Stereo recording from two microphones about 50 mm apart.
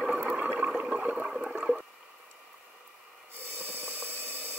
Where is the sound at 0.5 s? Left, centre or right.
Right.